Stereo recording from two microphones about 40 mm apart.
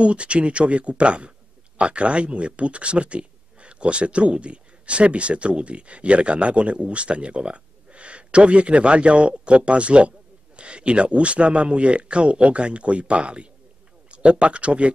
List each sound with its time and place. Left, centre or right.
0.0 s speech: right